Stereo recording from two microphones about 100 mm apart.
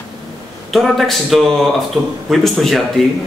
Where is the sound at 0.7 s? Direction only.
Centre (ahead or behind).